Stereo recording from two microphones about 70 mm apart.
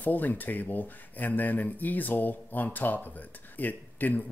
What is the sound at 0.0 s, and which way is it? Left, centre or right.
Speech, left.